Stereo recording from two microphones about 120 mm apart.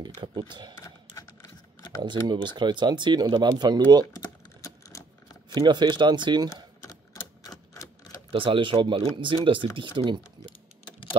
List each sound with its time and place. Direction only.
0.0 s speech: 40° right (ahead or behind)
1.1 s typewriter: 25° left (ahead or behind)
2.0 s speech: 40° right (ahead or behind)
4.1 s a sound: 25° left (ahead or behind)
5.5 s speech: 40° right (ahead or behind)
6.5 s typing: 30° left (ahead or behind)
7.4 s typewriter: 30° left (ahead or behind)
8.3 s speech: 45° right (ahead or behind)